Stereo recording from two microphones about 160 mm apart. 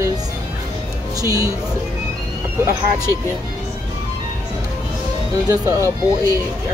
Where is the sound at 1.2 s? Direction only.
20° right (ahead or behind).